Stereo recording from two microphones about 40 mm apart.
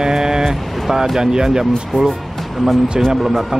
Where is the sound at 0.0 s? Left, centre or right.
Centre.